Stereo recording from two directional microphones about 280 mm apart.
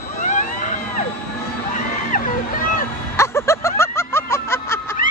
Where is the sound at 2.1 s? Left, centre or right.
Left.